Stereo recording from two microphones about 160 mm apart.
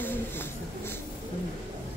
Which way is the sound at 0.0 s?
15° left (ahead or behind).